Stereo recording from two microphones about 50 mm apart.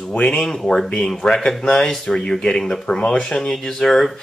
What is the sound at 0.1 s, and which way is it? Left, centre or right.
Speech, left.